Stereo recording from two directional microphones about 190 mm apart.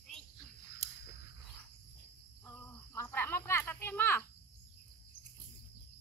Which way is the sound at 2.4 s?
15° left (ahead or behind).